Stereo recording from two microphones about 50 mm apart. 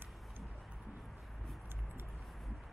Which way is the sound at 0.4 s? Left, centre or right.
Centre.